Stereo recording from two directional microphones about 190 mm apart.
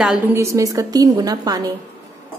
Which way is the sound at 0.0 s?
5° right (ahead or behind).